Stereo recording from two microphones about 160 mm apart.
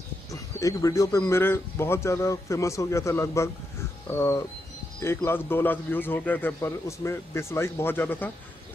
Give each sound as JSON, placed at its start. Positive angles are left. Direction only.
{"t": 0.3, "sound": "a man's voice", "side_deg": 20}